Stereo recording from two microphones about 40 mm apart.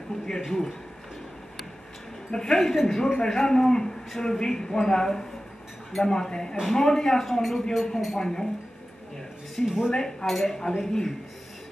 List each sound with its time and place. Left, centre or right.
0.5 s a man's voice: centre
2.3 s a man's voice: centre
9.6 s speech: left
9.9 s a man's voice: centre